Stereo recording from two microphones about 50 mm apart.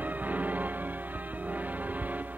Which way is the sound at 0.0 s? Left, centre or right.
Right.